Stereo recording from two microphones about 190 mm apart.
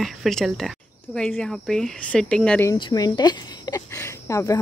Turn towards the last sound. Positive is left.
turn(degrees=15)  # may be behind; listen again after turning